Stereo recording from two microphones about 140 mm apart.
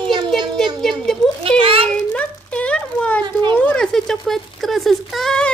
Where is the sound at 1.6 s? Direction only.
40° right (ahead or behind).